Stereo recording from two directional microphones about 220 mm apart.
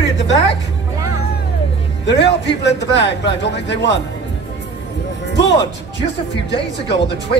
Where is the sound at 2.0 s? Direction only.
50° left (ahead or behind).